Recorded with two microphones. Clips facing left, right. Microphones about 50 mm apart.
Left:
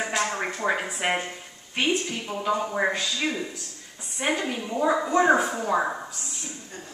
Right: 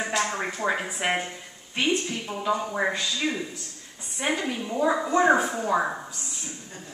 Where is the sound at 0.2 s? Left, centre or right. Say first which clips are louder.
Even; centre.